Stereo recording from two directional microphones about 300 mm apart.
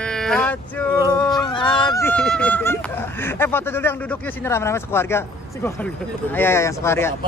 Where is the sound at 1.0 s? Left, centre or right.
Centre.